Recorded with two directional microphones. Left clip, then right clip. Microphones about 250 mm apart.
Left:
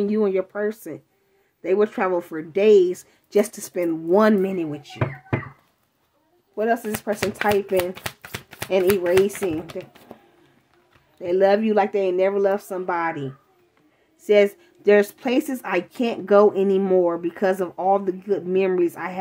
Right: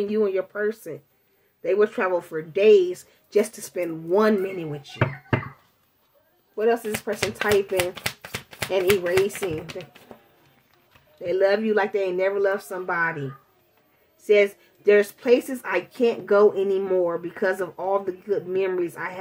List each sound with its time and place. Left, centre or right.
0.1 s speech: left
6.5 s speech: left
6.8 s speech: left
11.2 s speech: left
14.2 s speech: left